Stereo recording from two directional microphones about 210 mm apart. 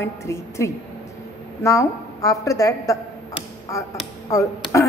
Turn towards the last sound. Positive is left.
turn(degrees=15)  # may be behind; listen again after turning